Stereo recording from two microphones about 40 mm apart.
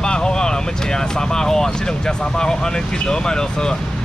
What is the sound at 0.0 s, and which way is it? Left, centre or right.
Speech, centre.